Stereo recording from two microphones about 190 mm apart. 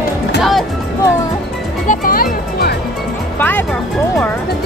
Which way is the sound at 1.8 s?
50° left (ahead or behind).